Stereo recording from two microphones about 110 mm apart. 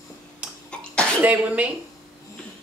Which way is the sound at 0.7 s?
10° left (ahead or behind).